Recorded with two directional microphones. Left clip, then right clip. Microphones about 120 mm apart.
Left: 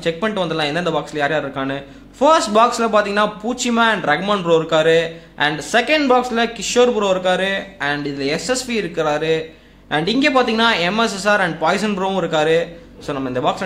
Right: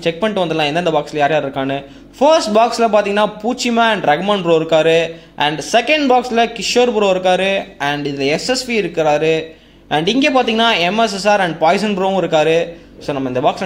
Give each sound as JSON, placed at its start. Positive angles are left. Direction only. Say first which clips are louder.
{"t": 0.0, "sound": "a man's voice", "louder": "right 3 dB", "side_deg": -15}